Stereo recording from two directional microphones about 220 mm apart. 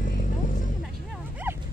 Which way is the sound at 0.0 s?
40° left (ahead or behind).